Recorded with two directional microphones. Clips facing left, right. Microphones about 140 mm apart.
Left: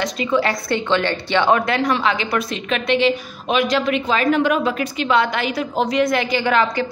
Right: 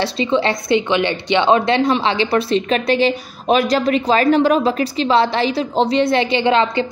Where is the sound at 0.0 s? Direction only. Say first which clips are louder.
Right 2 dB; 25° right (ahead or behind).